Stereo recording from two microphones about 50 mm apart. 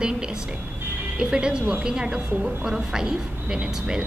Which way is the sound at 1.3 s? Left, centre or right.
Centre.